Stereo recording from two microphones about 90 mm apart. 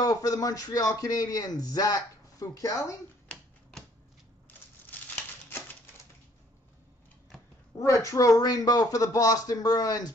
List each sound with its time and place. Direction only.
0.0 s a man's voice: 45° left (ahead or behind)
3.3 s typewriter: 10° left (ahead or behind)
7.8 s a man's voice: 35° left (ahead or behind)